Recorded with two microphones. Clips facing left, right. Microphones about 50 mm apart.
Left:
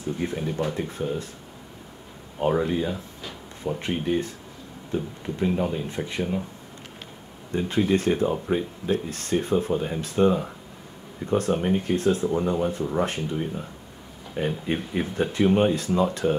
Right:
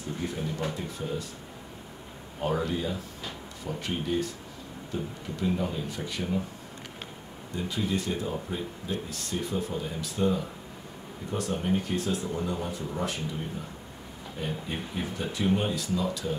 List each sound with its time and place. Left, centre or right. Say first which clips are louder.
0.2 s speech: left 4 dB; left
2.5 s speech: left 3 dB; left
7.5 s speech: left 8 dB; left